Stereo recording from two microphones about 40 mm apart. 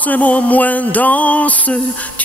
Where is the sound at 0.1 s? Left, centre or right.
Left.